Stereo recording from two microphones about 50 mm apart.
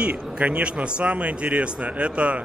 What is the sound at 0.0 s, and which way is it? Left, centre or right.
Speech, right.